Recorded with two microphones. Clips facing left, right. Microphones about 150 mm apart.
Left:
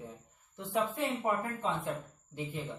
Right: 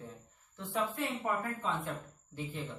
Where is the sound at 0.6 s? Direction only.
15° left (ahead or behind).